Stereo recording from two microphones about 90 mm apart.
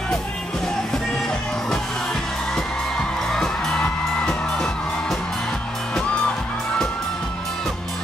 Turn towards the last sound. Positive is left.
turn(degrees=10)  # may be behind; listen again after turning